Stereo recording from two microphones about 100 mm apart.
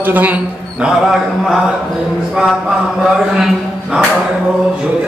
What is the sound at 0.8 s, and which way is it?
Speech, 5° right (ahead or behind).